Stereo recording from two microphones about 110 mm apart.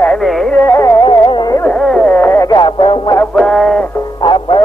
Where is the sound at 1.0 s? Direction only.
40° left (ahead or behind).